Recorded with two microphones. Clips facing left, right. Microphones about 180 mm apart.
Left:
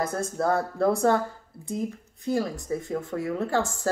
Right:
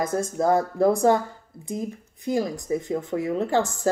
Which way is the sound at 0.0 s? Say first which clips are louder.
Right 3 dB; 15° right (ahead or behind).